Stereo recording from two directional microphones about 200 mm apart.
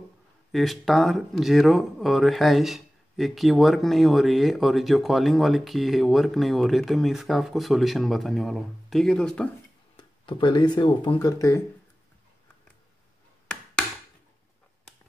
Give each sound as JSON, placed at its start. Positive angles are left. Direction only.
{"t": 0.5, "sound": "speech", "side_deg": 0}
{"t": 9.9, "sound": "speech", "side_deg": 25}